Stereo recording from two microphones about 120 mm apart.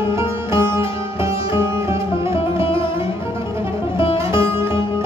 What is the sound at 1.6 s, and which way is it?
Music, 20° right (ahead or behind).